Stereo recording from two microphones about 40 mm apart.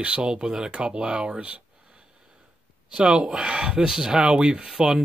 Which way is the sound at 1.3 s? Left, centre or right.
Right.